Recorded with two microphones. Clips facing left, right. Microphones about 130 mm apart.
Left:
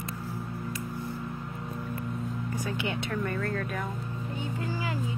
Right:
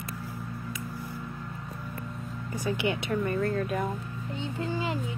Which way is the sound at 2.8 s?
15° right (ahead or behind).